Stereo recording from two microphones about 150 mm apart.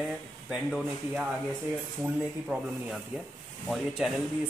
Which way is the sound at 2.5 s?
10° right (ahead or behind).